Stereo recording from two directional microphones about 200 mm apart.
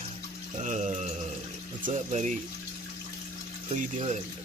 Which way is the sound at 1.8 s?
40° right (ahead or behind).